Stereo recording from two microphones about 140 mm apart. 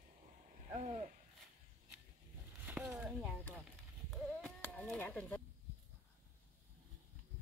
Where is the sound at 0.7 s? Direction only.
50° right (ahead or behind).